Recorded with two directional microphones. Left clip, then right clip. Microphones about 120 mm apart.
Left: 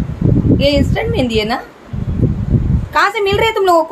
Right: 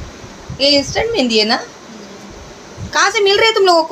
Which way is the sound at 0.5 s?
15° right (ahead or behind).